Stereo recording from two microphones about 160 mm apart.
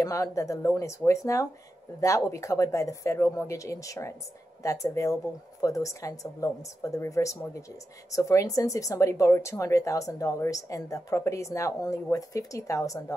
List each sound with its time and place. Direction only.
0.0 s speech: 20° left (ahead or behind)